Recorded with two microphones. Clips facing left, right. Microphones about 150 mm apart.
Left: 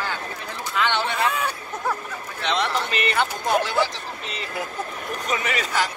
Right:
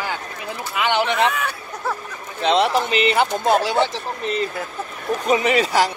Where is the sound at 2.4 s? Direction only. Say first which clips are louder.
Right 7 dB; 25° right (ahead or behind).